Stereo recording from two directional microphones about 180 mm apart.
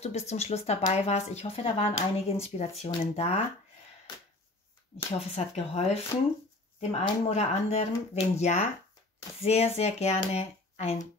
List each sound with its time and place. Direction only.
0.0 s speech: 35° left (ahead or behind)
4.9 s speech: 35° left (ahead or behind)